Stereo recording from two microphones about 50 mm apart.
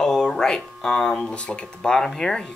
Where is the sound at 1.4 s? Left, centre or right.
Left.